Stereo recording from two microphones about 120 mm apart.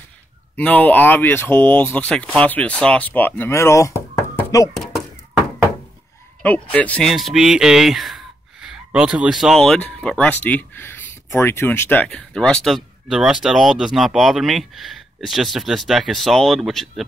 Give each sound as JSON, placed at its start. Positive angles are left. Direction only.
{"t": 0.6, "sound": "speech", "side_deg": 15}
{"t": 6.4, "sound": "speech", "side_deg": 10}
{"t": 7.1, "sound": "speech", "side_deg": 0}
{"t": 12.1, "sound": "speech", "side_deg": 5}